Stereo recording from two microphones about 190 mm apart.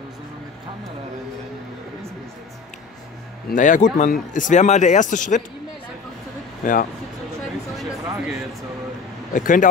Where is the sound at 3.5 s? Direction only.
40° left (ahead or behind).